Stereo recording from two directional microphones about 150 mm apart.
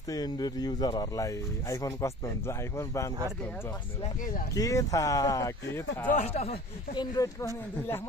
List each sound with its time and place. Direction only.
0.1 s speech: 25° left (ahead or behind)
4.6 s speech: 20° left (ahead or behind)
6.1 s speech: 45° left (ahead or behind)
7.0 s speech: 20° left (ahead or behind)